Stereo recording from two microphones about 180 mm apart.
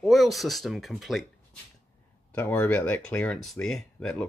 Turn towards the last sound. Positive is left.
turn(degrees=5)  # may be behind; listen again after turning